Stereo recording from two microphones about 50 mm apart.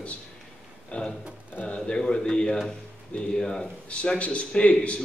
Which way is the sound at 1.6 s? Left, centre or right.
Left.